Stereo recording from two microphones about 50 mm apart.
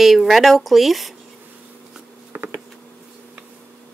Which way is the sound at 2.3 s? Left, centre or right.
Right.